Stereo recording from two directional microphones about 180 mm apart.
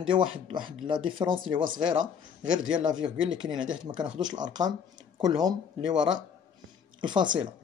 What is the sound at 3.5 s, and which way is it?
Speech, 90° right.